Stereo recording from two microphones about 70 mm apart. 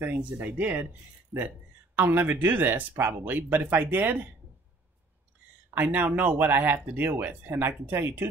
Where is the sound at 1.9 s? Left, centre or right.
Right.